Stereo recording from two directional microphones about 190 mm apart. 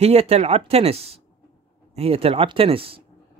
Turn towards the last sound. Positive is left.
turn(degrees=-30)  # may be behind; listen again after turning